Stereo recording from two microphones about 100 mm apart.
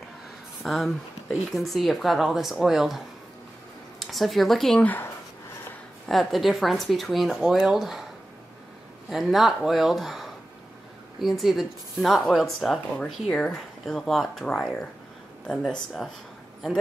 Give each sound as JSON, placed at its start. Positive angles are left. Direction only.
{"t": 0.7, "sound": "speech", "side_deg": 0}
{"t": 4.0, "sound": "speech", "side_deg": 0}
{"t": 4.8, "sound": "speech", "side_deg": 20}
{"t": 6.0, "sound": "speech", "side_deg": 0}
{"t": 9.1, "sound": "speech", "side_deg": 0}